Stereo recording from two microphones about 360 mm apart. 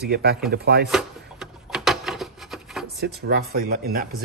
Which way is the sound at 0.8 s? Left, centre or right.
Centre.